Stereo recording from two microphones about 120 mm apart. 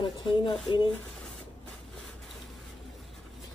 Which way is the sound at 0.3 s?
45° left (ahead or behind).